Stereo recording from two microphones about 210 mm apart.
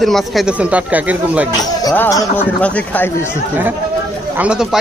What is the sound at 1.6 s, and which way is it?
Speech, 15° left (ahead or behind).